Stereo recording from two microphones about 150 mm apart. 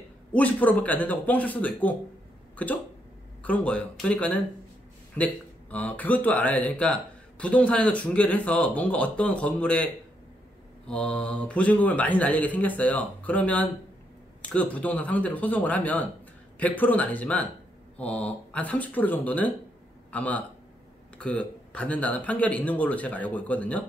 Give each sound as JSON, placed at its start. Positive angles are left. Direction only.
{"t": 0.3, "sound": "speech", "side_deg": 10}
{"t": 10.9, "sound": "a man's voice", "side_deg": 10}